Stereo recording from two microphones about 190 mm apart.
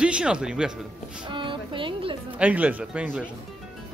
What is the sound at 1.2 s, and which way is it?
Speech, 25° right (ahead or behind).